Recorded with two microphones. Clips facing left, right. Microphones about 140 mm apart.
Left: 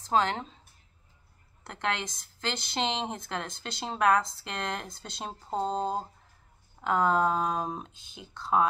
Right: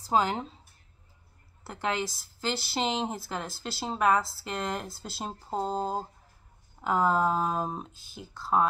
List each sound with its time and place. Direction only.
0.0 s speech: 10° right (ahead or behind)
1.6 s a woman's voice: 5° right (ahead or behind)